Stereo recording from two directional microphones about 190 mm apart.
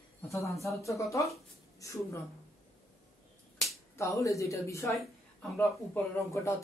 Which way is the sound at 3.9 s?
15° left (ahead or behind).